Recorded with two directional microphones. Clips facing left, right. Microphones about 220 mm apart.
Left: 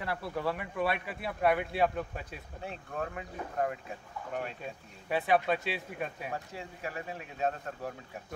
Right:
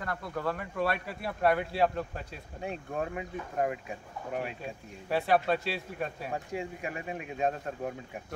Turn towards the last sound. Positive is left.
turn(degrees=-15)  # may be behind; listen again after turning